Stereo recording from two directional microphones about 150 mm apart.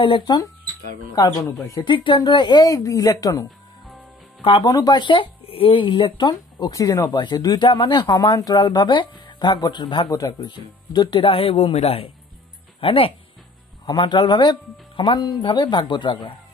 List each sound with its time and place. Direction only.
0.0 s speech: 30° left (ahead or behind)
1.9 s speech: 30° left (ahead or behind)
4.4 s speech: 35° left (ahead or behind)